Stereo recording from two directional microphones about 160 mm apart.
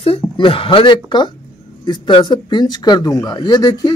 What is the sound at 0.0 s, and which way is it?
Speech, 35° left (ahead or behind).